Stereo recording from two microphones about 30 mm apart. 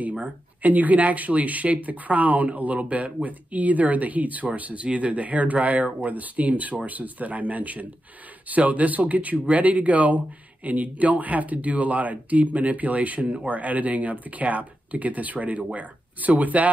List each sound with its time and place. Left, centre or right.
0.6 s speech: right